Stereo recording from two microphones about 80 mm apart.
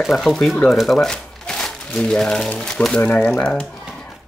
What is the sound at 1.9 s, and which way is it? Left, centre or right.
Speech, centre.